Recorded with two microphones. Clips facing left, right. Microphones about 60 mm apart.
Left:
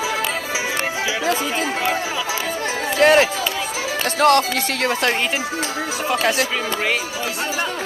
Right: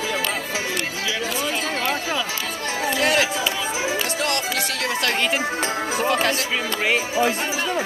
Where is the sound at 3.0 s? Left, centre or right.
Left.